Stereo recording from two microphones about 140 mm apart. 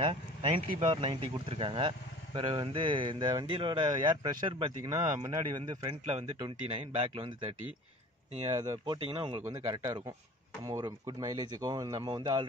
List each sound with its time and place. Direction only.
0.0 s speech: 45° right (ahead or behind)
8.5 s speech: 30° right (ahead or behind)